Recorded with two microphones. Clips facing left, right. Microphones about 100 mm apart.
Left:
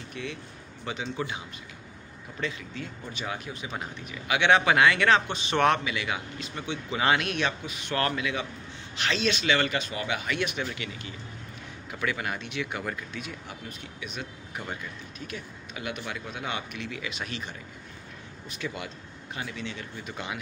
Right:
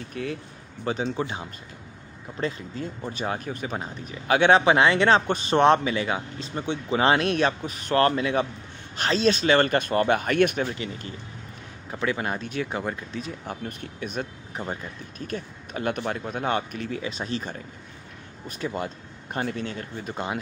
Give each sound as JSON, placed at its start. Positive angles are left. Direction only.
{"t": 0.1, "sound": "speech", "side_deg": -45}
{"t": 2.4, "sound": "speech", "side_deg": -35}
{"t": 5.2, "sound": "speech", "side_deg": -45}
{"t": 5.6, "sound": "speech", "side_deg": -35}
{"t": 12.8, "sound": "speech", "side_deg": -30}
{"t": 13.7, "sound": "speech", "side_deg": -50}
{"t": 14.6, "sound": "speech", "side_deg": -35}